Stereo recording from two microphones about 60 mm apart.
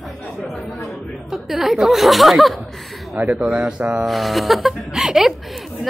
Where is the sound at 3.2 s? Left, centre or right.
Right.